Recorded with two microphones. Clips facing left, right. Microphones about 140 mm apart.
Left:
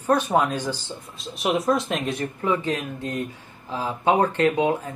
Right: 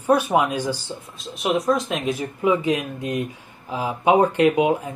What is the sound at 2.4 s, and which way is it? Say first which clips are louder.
Speech: right 5 dB; 10° right (ahead or behind).